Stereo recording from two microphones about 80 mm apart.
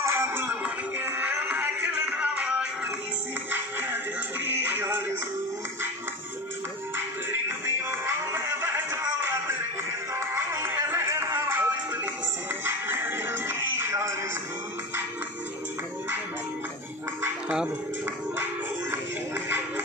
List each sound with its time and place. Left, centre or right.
0.0 s music: right; by 2.7 s centre
3.5 s music: right
7.0 s music: right
18.4 s music: right